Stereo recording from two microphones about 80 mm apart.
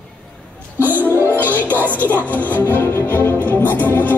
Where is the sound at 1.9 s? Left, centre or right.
Left.